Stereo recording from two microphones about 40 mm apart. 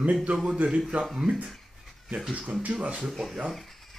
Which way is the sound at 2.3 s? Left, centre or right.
Right.